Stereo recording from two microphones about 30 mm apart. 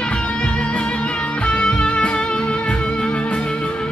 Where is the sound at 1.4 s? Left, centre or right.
Left.